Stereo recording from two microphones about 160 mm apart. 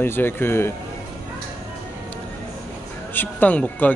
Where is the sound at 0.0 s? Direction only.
15° left (ahead or behind).